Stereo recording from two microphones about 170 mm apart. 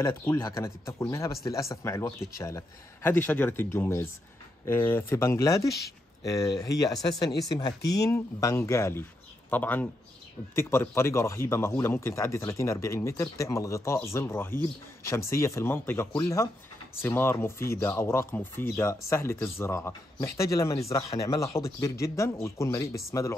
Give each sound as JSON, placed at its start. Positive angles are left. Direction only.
{"t": 0.0, "sound": "speech", "side_deg": 15}